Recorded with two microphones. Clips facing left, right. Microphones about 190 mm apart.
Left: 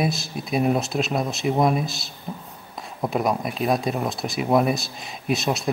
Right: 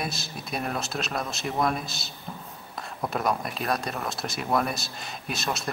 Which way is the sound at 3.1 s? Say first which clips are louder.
Left 4 dB; centre (ahead or behind).